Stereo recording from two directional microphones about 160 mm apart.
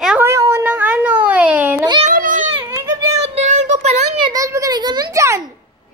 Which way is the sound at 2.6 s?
20° right (ahead or behind).